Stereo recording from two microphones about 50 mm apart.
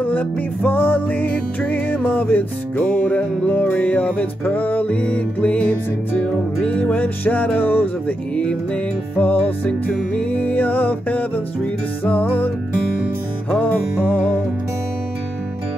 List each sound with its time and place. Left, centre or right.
0.0 s music: left
9.2 s music: left
10.4 s music: left
13.5 s music: left